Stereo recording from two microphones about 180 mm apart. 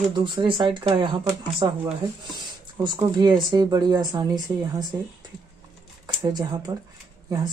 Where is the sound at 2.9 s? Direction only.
25° right (ahead or behind).